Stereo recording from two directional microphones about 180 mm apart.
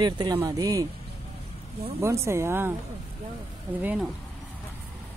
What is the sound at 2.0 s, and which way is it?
Speech, 15° right (ahead or behind).